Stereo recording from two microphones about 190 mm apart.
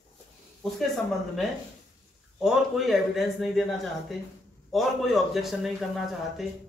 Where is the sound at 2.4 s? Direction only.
Centre (ahead or behind).